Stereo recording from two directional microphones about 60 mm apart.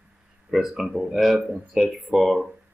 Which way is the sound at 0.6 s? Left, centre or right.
Centre.